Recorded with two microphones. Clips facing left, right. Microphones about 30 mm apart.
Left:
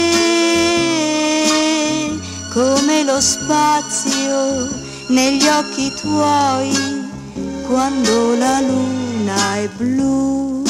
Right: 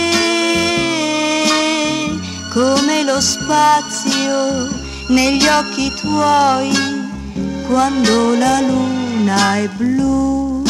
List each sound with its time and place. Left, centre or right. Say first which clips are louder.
0.0 s music: left 1 dB; right